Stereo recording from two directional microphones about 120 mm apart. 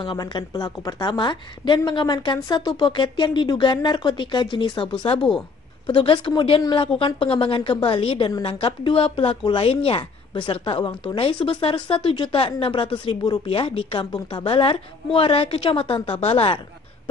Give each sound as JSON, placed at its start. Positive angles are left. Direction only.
{"t": 0.0, "sound": "a woman's voice", "side_deg": 40}